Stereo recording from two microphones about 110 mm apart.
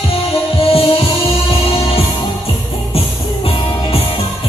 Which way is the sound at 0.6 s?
60° left (ahead or behind).